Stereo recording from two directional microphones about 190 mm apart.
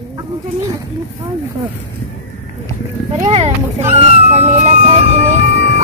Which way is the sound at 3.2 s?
35° right (ahead or behind).